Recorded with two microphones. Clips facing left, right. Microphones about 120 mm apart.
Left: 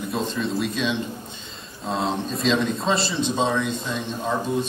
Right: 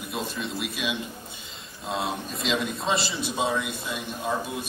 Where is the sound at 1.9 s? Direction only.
30° left (ahead or behind).